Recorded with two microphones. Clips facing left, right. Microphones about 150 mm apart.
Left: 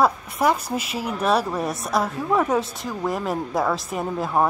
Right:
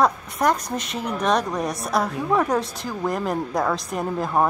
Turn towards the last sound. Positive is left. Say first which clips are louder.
# even
turn(degrees=0)  # may be behind; listen again after turning